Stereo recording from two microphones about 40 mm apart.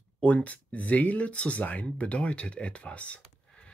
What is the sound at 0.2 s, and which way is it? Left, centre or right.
Speech, left.